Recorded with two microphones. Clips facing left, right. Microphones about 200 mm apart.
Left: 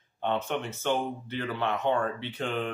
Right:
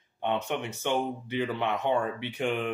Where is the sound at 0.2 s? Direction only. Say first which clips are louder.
Even; 15° right (ahead or behind).